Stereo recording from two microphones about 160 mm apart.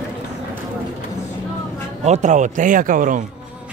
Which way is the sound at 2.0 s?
45° right (ahead or behind).